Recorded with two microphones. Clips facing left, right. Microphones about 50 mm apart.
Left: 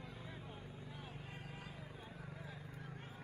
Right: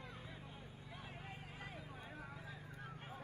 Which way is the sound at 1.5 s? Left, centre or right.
Right.